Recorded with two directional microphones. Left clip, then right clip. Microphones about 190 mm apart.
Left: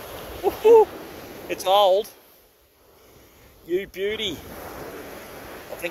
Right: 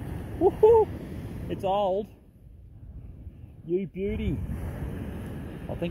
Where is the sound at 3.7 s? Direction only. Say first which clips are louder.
Left 4 dB; 70° left (ahead or behind).